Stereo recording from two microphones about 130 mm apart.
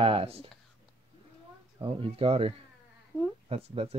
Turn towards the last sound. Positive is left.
turn(degrees=-50)  # may be behind; listen again after turning